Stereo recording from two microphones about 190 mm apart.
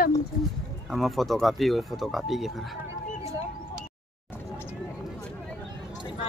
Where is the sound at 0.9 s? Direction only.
Centre (ahead or behind).